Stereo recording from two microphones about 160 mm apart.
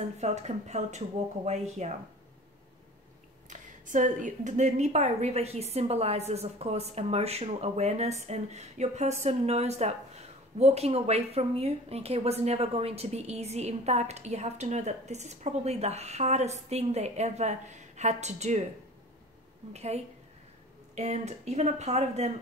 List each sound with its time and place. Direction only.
0.2 s a woman's voice: 45° right (ahead or behind)
3.4 s a woman's voice: 50° right (ahead or behind)
19.7 s a woman's voice: 40° right (ahead or behind)